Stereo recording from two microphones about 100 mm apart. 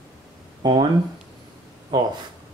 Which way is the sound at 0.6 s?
40° right (ahead or behind).